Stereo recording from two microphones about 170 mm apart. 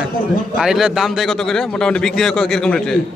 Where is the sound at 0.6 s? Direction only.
5° right (ahead or behind).